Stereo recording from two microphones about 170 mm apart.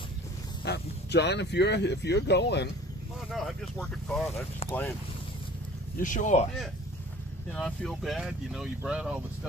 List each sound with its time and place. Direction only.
0.7 s speech: 80° left
3.3 s speech: centre (ahead or behind)
5.9 s speech: 50° left (ahead or behind)
7.5 s speech: 5° left (ahead or behind)